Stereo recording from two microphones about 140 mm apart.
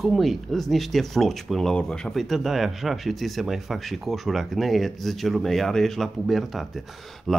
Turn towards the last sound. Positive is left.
turn(degrees=0)  # may be behind; listen again after turning